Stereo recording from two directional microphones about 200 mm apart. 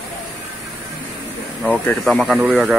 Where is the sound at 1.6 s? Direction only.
5° left (ahead or behind).